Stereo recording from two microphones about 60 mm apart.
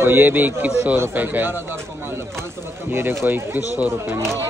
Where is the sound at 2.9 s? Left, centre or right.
Right.